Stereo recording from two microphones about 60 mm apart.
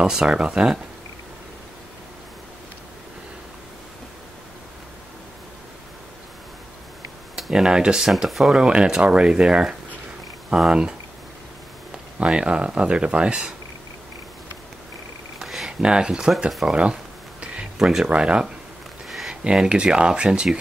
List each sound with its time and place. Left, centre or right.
0.0 s speech: centre
7.3 s speech: centre
8.1 s speech: centre
12.2 s speech: centre
15.3 s a sound: centre
15.8 s speech: centre
16.7 s a sound: centre
19.0 s a sound: centre
19.4 s speech: centre